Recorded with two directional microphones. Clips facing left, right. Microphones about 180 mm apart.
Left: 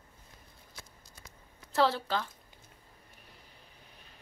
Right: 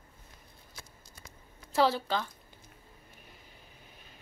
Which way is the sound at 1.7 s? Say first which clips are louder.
Right 1 dB; centre (ahead or behind).